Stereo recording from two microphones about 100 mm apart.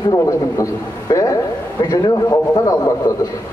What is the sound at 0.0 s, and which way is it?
A man's voice, 35° left (ahead or behind).